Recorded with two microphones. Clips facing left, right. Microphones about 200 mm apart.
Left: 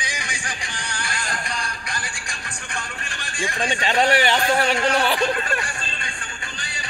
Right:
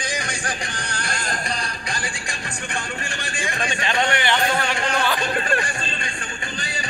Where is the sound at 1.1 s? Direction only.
35° right (ahead or behind).